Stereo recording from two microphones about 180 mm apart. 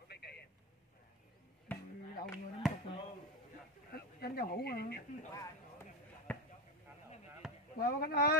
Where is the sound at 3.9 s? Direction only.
60° left (ahead or behind).